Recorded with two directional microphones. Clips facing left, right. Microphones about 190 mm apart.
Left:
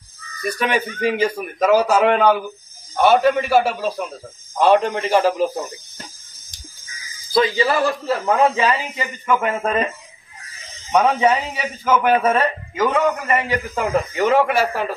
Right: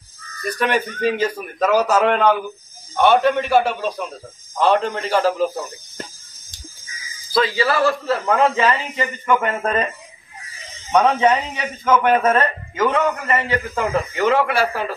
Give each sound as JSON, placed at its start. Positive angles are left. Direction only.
{"t": 0.4, "sound": "a man's voice", "side_deg": 10}
{"t": 7.3, "sound": "a man's voice", "side_deg": 20}
{"t": 10.9, "sound": "a man's voice", "side_deg": 5}